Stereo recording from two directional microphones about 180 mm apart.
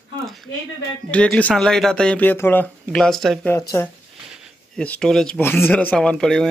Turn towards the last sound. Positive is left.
turn(degrees=5)  # may be behind; listen again after turning